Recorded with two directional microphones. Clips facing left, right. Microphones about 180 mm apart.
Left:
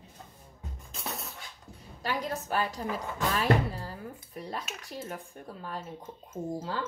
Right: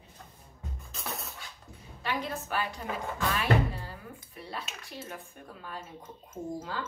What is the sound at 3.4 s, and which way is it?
Speech, 40° left (ahead or behind).